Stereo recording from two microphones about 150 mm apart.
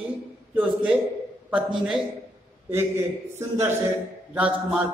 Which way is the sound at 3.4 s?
15° right (ahead or behind).